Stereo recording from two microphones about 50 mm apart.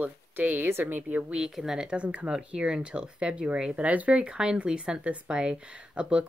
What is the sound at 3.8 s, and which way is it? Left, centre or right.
Speech, right.